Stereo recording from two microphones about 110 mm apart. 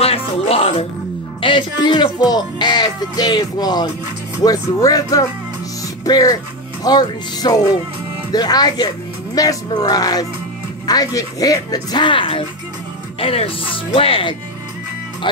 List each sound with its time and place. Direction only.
0.0 s speech: 65° left (ahead or behind)
1.4 s a man's voice: 45° left (ahead or behind)